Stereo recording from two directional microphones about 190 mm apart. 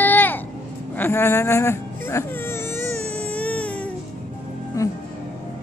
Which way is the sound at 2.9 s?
35° right (ahead or behind).